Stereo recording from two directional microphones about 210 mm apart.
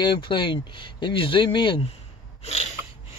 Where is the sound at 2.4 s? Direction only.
30° left (ahead or behind).